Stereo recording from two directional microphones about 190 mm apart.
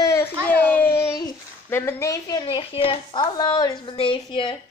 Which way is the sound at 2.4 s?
30° left (ahead or behind).